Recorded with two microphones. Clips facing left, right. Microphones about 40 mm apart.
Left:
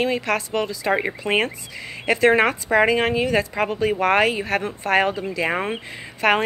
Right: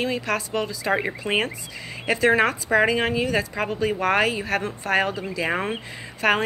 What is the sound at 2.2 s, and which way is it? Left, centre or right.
Speech, left.